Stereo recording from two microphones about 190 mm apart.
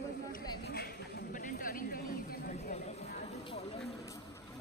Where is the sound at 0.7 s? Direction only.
55° left (ahead or behind).